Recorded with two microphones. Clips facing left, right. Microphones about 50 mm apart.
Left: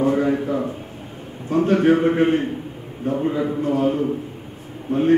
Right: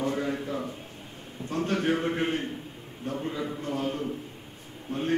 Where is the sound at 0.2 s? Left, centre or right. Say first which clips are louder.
Left 10 dB; left.